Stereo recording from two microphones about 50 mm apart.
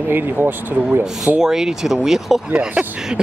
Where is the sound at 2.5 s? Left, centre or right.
Centre.